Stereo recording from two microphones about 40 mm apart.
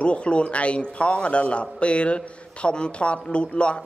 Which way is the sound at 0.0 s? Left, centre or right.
Left.